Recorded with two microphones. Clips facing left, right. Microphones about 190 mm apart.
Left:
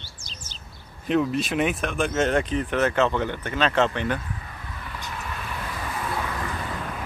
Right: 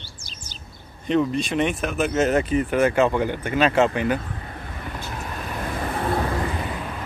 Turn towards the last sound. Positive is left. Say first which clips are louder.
# right 4 dB
turn(degrees=-20)  # may be behind; listen again after turning